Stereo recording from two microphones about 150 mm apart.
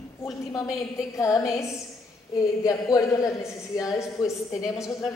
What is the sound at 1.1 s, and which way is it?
A woman's voice, 20° left (ahead or behind).